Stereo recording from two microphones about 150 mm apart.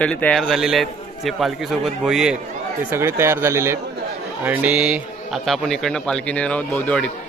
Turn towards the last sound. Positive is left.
turn(degrees=10)  # may be behind; listen again after turning